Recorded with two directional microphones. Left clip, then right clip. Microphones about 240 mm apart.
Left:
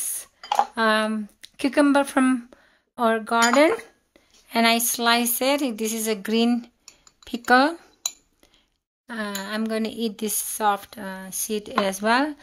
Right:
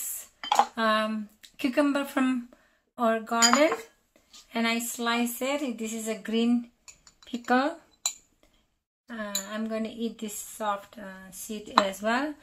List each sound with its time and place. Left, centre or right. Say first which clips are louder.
0.7 s speech: left 5 dB; left
9.0 s speech: left 4 dB; left